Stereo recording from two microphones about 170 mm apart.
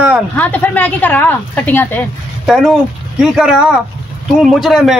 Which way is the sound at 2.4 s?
Centre (ahead or behind).